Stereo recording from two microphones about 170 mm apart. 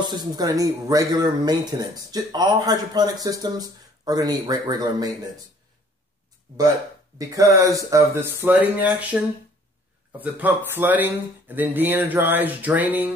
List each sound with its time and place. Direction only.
0.0 s speech: 25° right (ahead or behind)
7.2 s speech: 20° right (ahead or behind)